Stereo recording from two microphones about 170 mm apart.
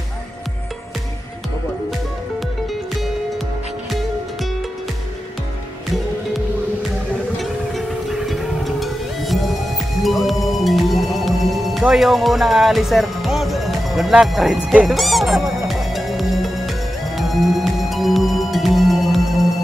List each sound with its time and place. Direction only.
7.3 s music: centre (ahead or behind)